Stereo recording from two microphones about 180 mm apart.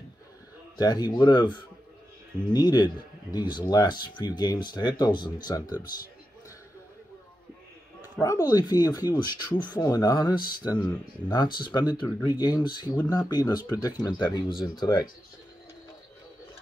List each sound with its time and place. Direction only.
0.7 s speech: 20° left (ahead or behind)
8.2 s speech: 20° left (ahead or behind)